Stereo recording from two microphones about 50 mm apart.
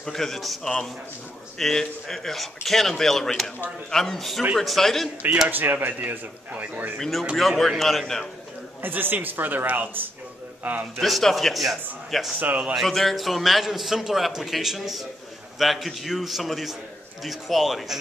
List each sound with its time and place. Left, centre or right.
0.0 s a man's voice: centre
1.6 s a man's voice: centre
5.5 s speech: right
7.0 s a man's voice: centre
8.8 s a man's voice: right
11.0 s a man's voice: centre
12.4 s speech: right
12.7 s a man's voice: centre